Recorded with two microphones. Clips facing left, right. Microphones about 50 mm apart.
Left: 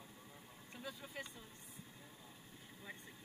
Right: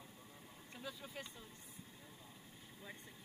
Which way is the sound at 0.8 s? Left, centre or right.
Centre.